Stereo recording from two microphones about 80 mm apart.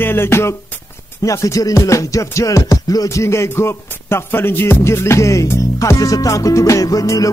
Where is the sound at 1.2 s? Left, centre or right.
Left.